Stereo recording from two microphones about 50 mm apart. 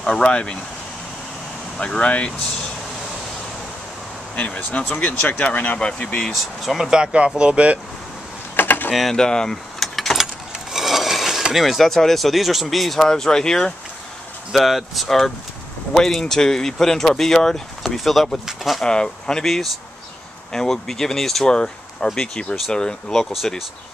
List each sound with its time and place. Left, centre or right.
0.0 s speech: centre
1.8 s speech: left
4.9 s speech: left
5.8 s speech: left
6.3 s speech: centre
6.9 s speech: centre
8.5 s a sound: left
9.1 s speech: centre
9.8 s vehicle: centre
11.5 s speech: centre
13.1 s speech: centre
14.5 s speech: centre
18.9 s speech: centre
19.4 s speech: centre